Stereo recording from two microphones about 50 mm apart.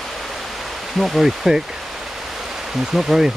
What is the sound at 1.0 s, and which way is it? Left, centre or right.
Speech, centre.